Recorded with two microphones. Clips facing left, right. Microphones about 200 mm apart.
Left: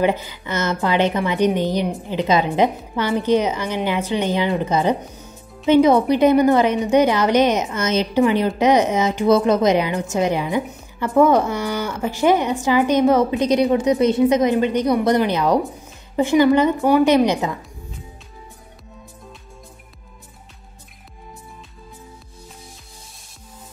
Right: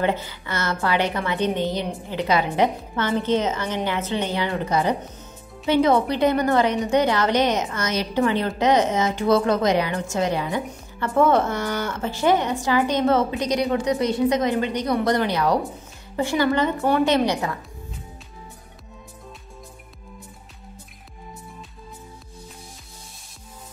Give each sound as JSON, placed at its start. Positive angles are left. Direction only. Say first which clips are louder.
{"t": 0.0, "sound": "a woman's voice", "louder": "left 4 dB", "side_deg": 15}